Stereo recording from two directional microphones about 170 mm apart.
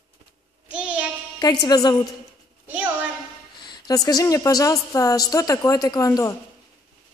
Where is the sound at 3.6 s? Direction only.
25° left (ahead or behind).